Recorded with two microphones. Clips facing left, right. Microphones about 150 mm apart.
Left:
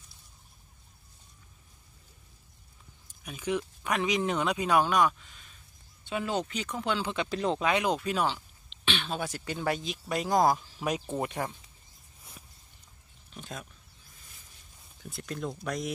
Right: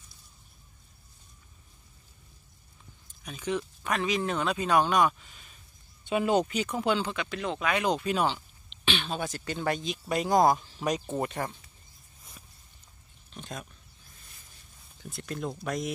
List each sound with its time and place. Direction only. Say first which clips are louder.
3.3 s speech: even; 10° left (ahead or behind)
6.0 s speech: right 6 dB; 15° right (ahead or behind)
7.2 s speech: left 3 dB; 35° left (ahead or behind)
7.8 s speech: right 1 dB; centre (ahead or behind)
13.3 s speech: right 1 dB; 5° left (ahead or behind)
15.0 s speech: right 1 dB; centre (ahead or behind)